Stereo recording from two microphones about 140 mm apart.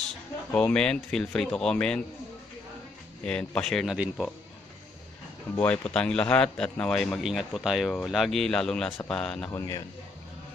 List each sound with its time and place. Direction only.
0.5 s speech: 10° left (ahead or behind)
3.3 s speech: 5° left (ahead or behind)
5.6 s speech: 10° left (ahead or behind)
9.5 s a man's voice: 25° left (ahead or behind)